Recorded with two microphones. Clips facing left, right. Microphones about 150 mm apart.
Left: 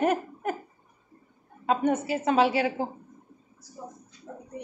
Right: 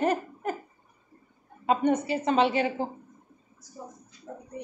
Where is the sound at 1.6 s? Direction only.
5° left (ahead or behind).